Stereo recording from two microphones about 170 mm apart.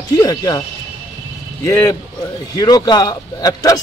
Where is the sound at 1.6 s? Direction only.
15° left (ahead or behind).